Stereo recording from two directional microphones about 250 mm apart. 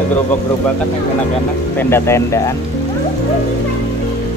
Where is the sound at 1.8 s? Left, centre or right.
Centre.